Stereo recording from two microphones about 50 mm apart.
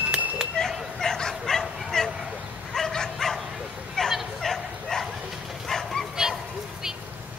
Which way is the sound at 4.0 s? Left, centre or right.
Centre.